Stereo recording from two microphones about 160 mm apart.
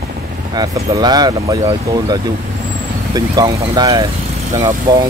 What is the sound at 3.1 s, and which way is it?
Speech, 25° right (ahead or behind).